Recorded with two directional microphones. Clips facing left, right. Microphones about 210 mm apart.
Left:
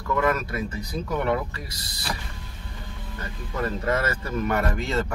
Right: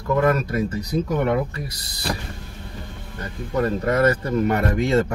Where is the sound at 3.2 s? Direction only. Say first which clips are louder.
Right 7 dB; 35° right (ahead or behind).